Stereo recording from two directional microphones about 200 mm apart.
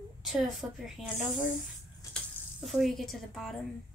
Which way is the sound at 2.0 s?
15° left (ahead or behind).